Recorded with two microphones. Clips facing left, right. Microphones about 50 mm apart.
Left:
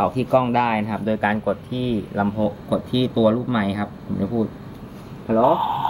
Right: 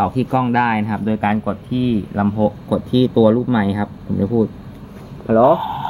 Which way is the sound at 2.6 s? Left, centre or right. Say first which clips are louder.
Right 5 dB; centre.